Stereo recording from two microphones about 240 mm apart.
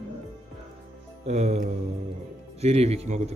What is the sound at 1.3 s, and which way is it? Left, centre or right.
Speech, right.